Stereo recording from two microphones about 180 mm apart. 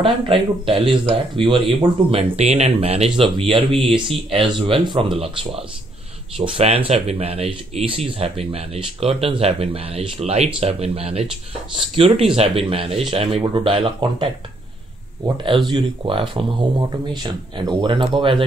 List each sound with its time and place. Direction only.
0.0 s speech: 30° right (ahead or behind)